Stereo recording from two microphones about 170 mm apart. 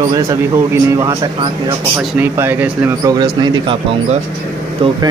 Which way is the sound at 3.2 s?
25° right (ahead or behind).